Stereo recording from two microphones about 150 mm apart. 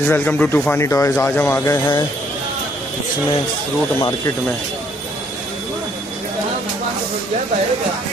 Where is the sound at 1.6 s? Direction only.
25° left (ahead or behind).